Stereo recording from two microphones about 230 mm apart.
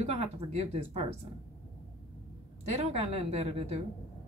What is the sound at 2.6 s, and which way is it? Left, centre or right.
A woman's voice, right.